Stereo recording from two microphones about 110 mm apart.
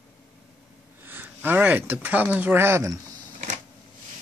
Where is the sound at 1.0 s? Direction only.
15° right (ahead or behind).